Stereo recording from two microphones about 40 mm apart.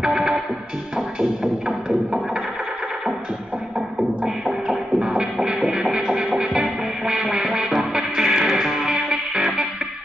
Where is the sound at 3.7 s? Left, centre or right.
Right.